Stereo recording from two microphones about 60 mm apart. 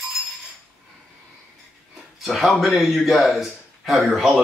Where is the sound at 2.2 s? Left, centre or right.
Centre.